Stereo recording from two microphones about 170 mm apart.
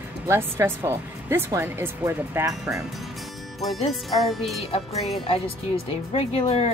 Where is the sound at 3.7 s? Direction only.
Centre (ahead or behind).